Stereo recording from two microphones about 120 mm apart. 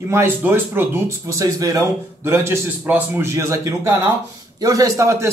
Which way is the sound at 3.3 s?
25° right (ahead or behind).